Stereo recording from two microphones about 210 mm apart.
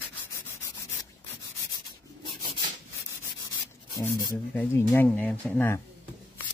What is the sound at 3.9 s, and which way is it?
Speech, 15° left (ahead or behind).